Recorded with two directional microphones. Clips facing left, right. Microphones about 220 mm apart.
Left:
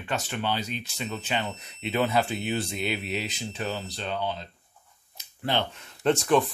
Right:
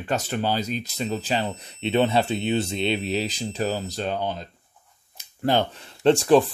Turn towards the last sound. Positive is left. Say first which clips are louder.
# right 6 dB
turn(degrees=-30)  # may be behind; listen again after turning